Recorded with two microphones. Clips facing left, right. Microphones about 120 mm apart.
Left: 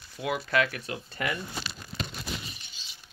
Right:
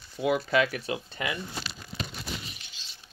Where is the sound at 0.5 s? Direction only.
10° right (ahead or behind).